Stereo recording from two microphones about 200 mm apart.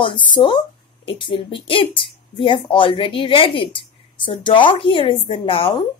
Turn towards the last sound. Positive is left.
turn(degrees=25)  # may be behind; listen again after turning